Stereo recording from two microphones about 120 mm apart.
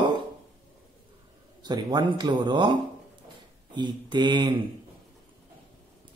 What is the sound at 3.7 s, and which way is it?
Speech, 40° right (ahead or behind).